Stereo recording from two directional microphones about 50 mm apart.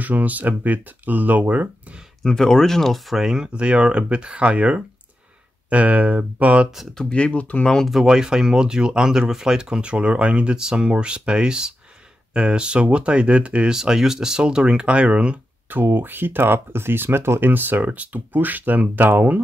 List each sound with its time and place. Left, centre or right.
0.0 s speech: right
2.2 s speech: centre
3.5 s speech: right
6.9 s speech: centre
7.6 s speech: centre
7.9 s speech: centre
13.7 s speech: centre
15.7 s speech: right